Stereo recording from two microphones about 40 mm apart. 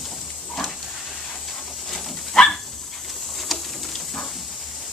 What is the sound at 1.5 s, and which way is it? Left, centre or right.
Dog, centre.